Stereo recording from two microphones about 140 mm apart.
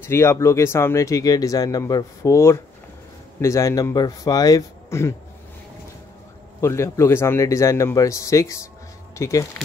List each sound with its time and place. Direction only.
0.0 s speech: 20° left (ahead or behind)
6.6 s speech: 20° left (ahead or behind)